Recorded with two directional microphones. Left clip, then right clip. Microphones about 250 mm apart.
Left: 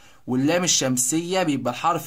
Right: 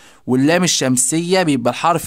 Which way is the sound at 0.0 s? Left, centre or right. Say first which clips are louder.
Right 7 dB; right.